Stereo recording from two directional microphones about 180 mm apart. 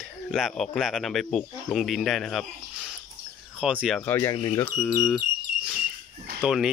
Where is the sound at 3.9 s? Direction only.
10° left (ahead or behind).